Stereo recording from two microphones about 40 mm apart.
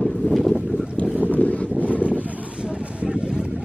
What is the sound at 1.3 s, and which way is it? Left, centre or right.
Wind noise, left.